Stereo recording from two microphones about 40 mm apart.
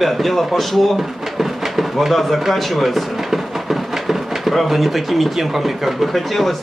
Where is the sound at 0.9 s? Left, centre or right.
Centre.